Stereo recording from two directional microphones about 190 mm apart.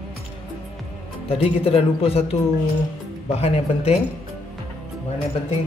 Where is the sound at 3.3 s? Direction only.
30° left (ahead or behind).